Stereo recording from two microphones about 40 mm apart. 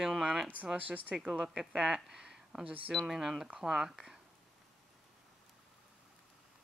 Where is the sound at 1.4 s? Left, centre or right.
Centre.